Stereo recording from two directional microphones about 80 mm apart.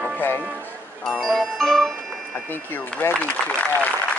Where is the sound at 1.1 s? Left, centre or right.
Centre.